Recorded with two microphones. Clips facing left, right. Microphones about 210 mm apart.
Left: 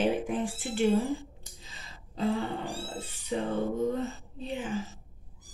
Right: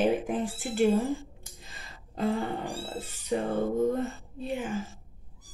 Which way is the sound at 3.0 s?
45° right (ahead or behind).